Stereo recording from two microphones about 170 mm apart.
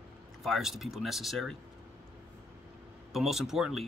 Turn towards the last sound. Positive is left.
turn(degrees=0)  # may be behind; listen again after turning